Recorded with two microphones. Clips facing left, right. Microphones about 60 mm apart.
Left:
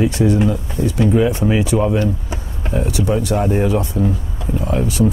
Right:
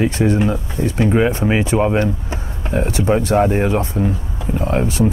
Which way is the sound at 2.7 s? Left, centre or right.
Right.